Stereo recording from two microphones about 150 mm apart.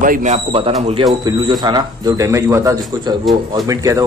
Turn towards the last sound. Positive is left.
turn(degrees=-25)  # may be behind; listen again after turning